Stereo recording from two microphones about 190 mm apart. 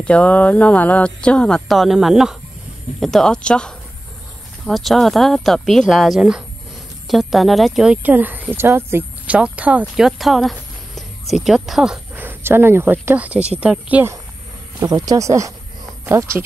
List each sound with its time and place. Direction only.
0.0 s speech: 5° left (ahead or behind); by 16.4 s 15° right (ahead or behind)